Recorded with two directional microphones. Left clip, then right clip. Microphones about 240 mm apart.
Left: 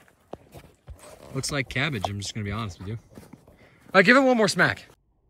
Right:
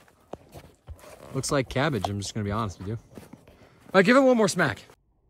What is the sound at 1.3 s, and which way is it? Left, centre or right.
Speech, centre.